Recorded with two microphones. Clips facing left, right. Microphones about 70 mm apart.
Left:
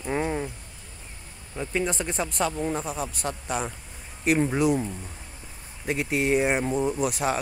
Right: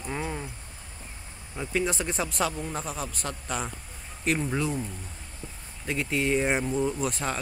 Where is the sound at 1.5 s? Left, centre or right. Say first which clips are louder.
Left 1 dB; centre.